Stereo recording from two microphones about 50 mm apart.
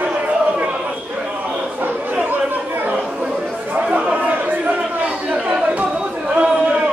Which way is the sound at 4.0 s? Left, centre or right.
Right.